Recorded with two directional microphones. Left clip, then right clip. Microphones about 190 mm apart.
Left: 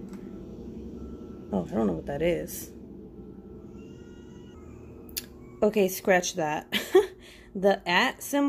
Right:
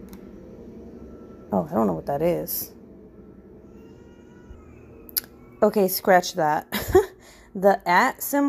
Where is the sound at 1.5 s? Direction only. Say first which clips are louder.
Right 6 dB; 20° right (ahead or behind).